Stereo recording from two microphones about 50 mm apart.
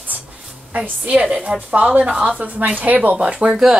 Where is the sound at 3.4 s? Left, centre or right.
Centre.